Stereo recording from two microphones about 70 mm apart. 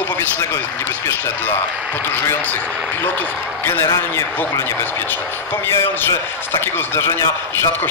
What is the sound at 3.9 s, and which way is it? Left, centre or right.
Speech, left.